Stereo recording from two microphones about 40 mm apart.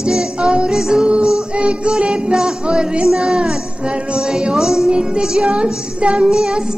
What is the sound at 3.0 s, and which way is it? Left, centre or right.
Speech, centre.